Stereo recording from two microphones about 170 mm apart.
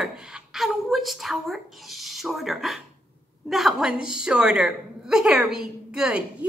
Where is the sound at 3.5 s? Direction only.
Centre (ahead or behind).